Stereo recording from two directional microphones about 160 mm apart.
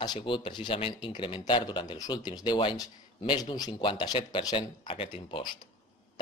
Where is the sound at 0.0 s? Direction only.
30° left (ahead or behind).